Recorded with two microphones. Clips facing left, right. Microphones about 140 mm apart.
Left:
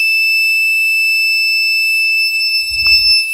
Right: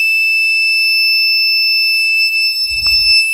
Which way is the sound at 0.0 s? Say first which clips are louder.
Even; 25° right (ahead or behind).